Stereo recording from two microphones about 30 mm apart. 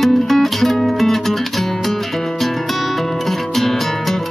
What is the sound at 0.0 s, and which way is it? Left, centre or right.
Music, centre.